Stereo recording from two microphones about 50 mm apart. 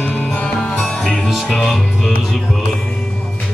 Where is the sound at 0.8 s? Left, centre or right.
Centre.